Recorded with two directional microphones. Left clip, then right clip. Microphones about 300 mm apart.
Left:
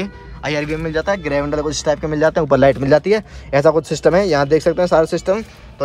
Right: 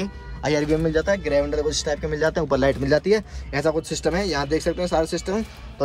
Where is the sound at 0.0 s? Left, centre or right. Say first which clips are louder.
Left 3 dB; centre.